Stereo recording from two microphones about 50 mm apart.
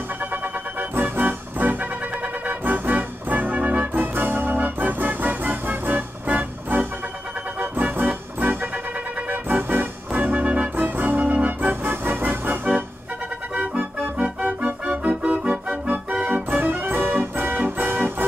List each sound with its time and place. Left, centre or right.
0.3 s music: right
10.8 s organ: right
11.8 s music: right
14.1 s music: centre
14.6 s organ: right
15.4 s music: centre
15.9 s organ: right
16.4 s music: right